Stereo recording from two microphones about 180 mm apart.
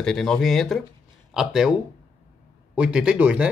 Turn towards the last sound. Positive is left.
turn(degrees=-5)  # may be behind; listen again after turning